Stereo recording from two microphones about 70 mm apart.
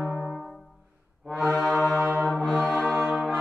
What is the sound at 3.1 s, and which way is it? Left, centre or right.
Brass instrument, centre.